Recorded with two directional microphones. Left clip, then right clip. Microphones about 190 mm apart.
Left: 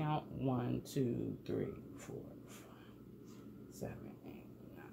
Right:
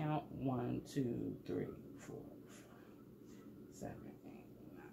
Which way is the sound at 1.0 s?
40° left (ahead or behind).